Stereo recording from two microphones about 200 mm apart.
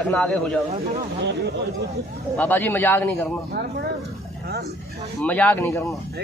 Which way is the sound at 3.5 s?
50° right (ahead or behind).